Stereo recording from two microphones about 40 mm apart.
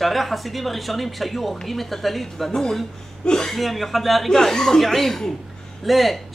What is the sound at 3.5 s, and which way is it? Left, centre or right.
A woman's voice, centre.